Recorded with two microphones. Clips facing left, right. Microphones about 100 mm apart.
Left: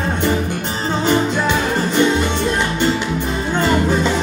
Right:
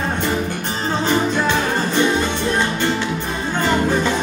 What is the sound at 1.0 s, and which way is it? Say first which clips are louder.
Music: left 2 dB; 20° left (ahead or behind).